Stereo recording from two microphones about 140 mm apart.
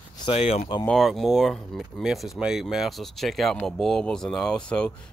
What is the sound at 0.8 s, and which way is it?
Speech, centre (ahead or behind).